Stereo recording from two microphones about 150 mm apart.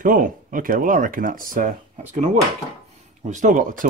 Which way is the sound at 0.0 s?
65° right (ahead or behind).